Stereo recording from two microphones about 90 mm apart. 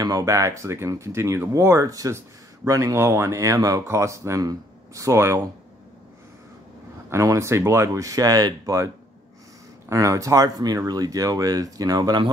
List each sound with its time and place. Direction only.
0.0 s speech: 40° right (ahead or behind)
7.1 s speech: 30° right (ahead or behind)